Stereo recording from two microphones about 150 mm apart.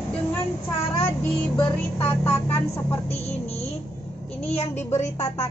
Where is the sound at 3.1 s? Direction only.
45° left (ahead or behind).